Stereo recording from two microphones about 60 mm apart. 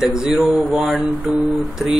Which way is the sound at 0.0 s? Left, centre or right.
Centre.